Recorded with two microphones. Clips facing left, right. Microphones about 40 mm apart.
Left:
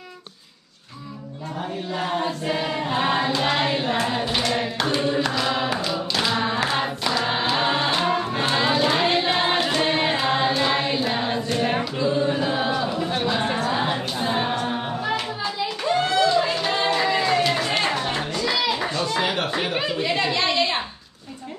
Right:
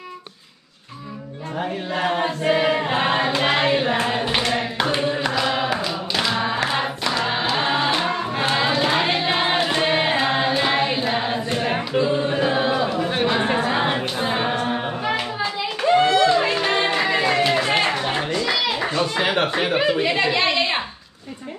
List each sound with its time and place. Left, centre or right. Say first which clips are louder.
2.0 s choir: right 3 dB; right
4.5 s clapping: right 2 dB; centre
5.0 s singing: right 1 dB; centre
6.7 s choir: right 1 dB; centre
8.9 s music: even; centre
11.9 s a sound: right 2 dB; right
13.0 s a capella: right 3 dB; right
16.1 s music: right 3 dB; right; by 18.4 s centre
18.4 s children playing: right 1 dB; centre
19.5 s speech: right 5 dB; centre